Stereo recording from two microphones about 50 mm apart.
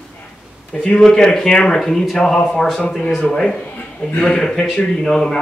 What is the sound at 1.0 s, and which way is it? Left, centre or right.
A man's voice, centre.